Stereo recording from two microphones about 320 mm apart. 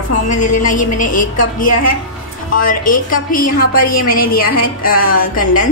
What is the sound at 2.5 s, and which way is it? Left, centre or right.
Speech, left.